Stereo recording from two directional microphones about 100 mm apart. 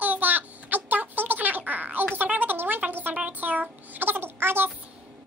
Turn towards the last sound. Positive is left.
turn(degrees=-20)  # may be behind; listen again after turning